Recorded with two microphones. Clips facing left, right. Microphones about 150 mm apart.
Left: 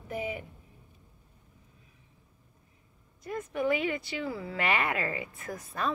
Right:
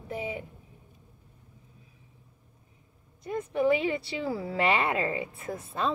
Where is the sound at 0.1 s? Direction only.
30° right (ahead or behind).